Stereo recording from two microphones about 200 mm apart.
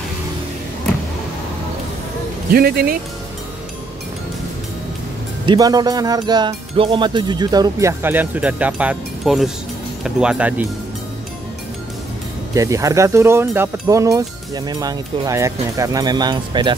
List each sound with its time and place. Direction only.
2.5 s speech: 50° right (ahead or behind)
5.4 s speech: 20° right (ahead or behind)
12.5 s speech: 15° right (ahead or behind)